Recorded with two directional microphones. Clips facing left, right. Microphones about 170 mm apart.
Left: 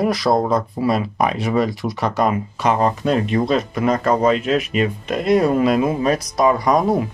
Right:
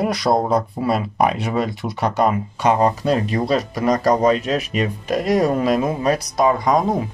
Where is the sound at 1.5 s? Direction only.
25° right (ahead or behind).